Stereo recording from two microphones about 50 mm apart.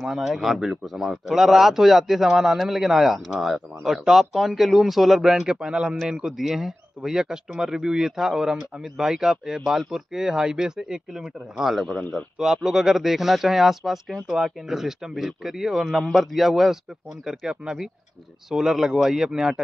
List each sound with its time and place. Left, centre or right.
0.0 s speech: centre
6.3 s speech: centre